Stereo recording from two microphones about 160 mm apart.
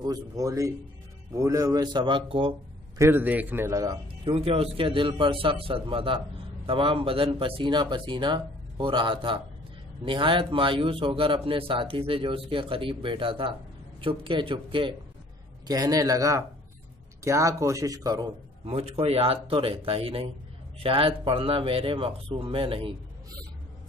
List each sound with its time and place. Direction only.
0.0 s a man's voice: 20° right (ahead or behind)
3.0 s a man's voice: 15° right (ahead or behind)
18.7 s a man's voice: 40° right (ahead or behind)